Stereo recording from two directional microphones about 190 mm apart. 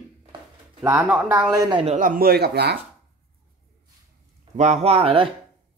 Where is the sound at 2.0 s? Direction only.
50° right (ahead or behind).